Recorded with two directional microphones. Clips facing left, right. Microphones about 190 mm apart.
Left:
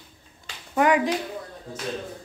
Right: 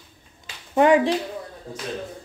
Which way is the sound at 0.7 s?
30° right (ahead or behind).